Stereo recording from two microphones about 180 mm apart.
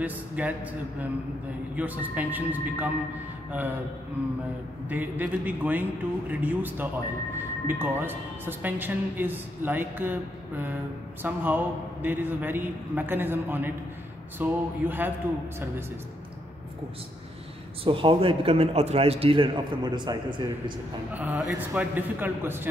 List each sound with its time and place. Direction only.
0.0 s a woman's voice: 10° right (ahead or behind)
1.8 s a woman's voice: 10° right (ahead or behind)
4.8 s a woman's voice: 10° right (ahead or behind)
11.2 s a woman's voice: 10° right (ahead or behind)
17.8 s a man's voice: 30° right (ahead or behind)
21.1 s a woman's voice: 10° right (ahead or behind)